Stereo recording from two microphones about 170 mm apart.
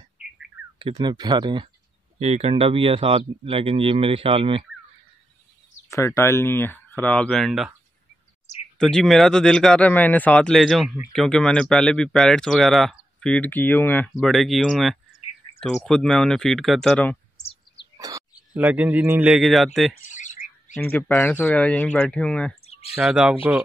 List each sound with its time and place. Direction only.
0.7 s speech: 30° right (ahead or behind)
2.1 s speech: 40° right (ahead or behind)
5.9 s speech: 15° left (ahead or behind); by 7.7 s centre (ahead or behind)
8.7 s speech: centre (ahead or behind)
14.1 s speech: centre (ahead or behind)
17.9 s bird: 20° right (ahead or behind)
18.5 s a man's voice: 10° right (ahead or behind)
19.9 s bird: 45° left (ahead or behind)
20.7 s speech: 10° left (ahead or behind); by 23.3 s 5° right (ahead or behind)